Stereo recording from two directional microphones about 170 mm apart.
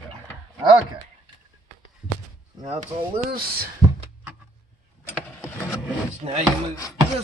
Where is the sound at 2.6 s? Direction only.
40° right (ahead or behind).